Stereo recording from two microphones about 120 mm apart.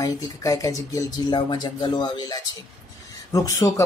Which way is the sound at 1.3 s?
40° left (ahead or behind).